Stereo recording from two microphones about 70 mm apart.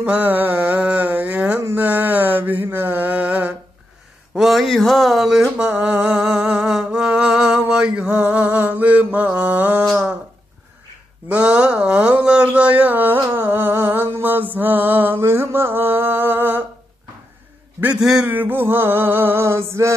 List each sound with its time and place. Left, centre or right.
0.0 s mantra: right
4.4 s speech: centre
5.6 s music: centre
6.7 s mantra: centre; by 9.8 s right
11.2 s speech: centre
13.2 s music: right
18.3 s male singing: right